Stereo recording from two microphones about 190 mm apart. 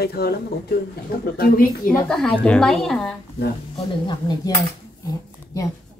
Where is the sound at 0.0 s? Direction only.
55° left (ahead or behind).